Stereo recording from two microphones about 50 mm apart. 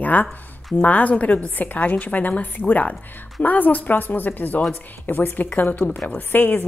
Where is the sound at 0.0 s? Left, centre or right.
Left.